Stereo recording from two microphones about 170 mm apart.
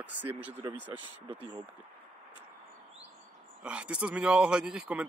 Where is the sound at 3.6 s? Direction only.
5° right (ahead or behind).